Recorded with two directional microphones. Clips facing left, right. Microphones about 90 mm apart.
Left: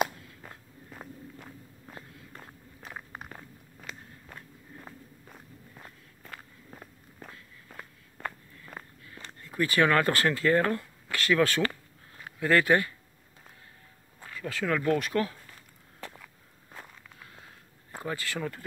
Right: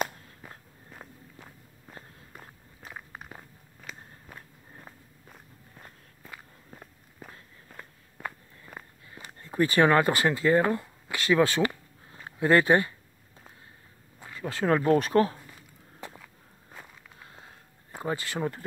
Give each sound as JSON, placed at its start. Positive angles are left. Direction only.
{"t": 0.4, "sound": "walk", "side_deg": 0}
{"t": 9.4, "sound": "speech", "side_deg": -25}
{"t": 14.2, "sound": "a sound", "side_deg": -20}
{"t": 14.5, "sound": "speech", "side_deg": -35}
{"t": 15.3, "sound": "a sound", "side_deg": -15}
{"t": 18.0, "sound": "speech", "side_deg": -20}